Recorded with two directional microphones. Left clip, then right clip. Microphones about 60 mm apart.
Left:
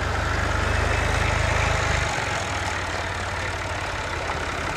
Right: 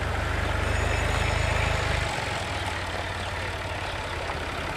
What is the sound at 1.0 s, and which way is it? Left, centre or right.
Vehicle, centre.